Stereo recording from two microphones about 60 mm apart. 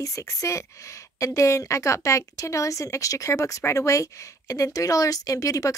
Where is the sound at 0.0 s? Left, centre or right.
Left.